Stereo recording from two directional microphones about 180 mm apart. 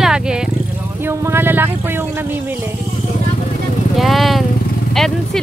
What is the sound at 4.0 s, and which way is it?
Speech, centre (ahead or behind).